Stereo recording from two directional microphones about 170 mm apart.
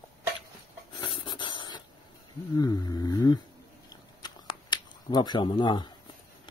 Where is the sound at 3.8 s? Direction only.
25° left (ahead or behind).